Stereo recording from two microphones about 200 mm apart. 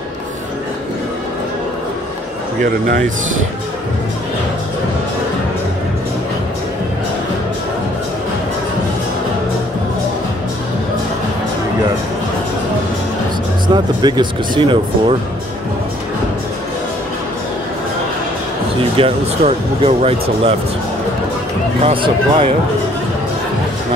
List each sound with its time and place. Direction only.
14.0 s speech: 20° right (ahead or behind)
18.9 s speech: 30° right (ahead or behind)
21.8 s speech: 25° right (ahead or behind)